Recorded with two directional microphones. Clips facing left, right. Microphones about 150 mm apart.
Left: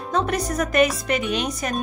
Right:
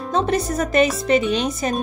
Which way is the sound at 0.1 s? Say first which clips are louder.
Right 3 dB; 30° right (ahead or behind).